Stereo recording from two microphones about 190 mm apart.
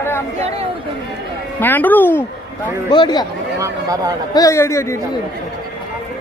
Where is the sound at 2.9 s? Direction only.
20° left (ahead or behind).